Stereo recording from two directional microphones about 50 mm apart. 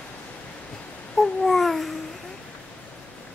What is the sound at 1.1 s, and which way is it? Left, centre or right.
Babbling, centre.